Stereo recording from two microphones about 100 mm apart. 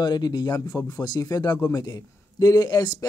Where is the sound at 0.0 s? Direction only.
45° left (ahead or behind).